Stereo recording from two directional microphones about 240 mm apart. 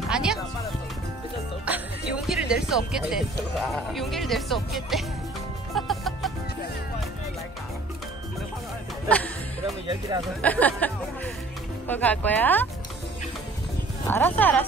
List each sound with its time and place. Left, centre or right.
0.1 s speech: centre
1.7 s speech: centre
5.8 s music: centre
9.1 s music: centre
9.8 s speech: centre
10.4 s speech: centre
11.9 s speech: centre
14.0 s speech: centre